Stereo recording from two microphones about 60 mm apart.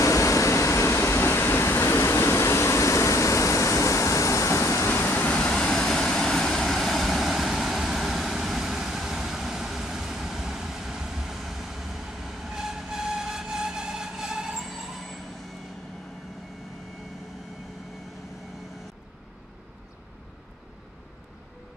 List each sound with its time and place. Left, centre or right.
0.0 s vehicle: left
5.0 s vehicle: left
5.4 s vehicle: centre